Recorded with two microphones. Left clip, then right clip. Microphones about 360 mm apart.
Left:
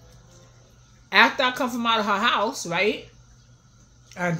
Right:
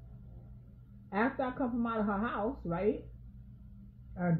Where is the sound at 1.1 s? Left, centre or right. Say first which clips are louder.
Left 15 dB; left.